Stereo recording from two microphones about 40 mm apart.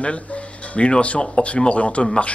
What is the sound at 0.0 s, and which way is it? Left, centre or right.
Speech, left.